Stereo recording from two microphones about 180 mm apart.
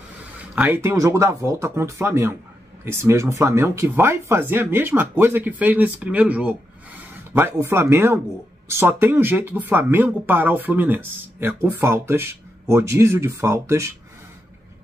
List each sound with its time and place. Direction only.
0.6 s speech: 10° right (ahead or behind)